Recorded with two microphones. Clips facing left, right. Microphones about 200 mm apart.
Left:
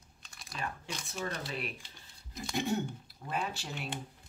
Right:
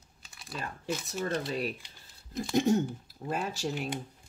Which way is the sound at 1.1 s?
40° right (ahead or behind).